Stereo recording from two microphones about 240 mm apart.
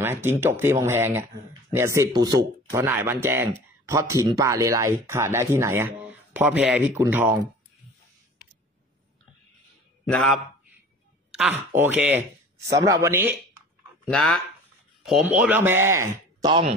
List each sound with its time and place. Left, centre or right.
0.0 s speech: centre
11.3 s speech: centre
14.1 s speech: centre
16.3 s a sound: centre